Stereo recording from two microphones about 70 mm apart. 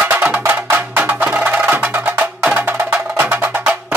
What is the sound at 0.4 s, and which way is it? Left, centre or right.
Music, right.